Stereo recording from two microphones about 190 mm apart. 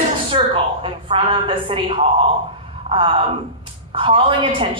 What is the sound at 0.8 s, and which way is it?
A woman's voice, 30° right (ahead or behind).